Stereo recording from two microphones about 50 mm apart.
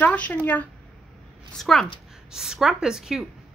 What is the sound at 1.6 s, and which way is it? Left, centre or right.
Speech, centre.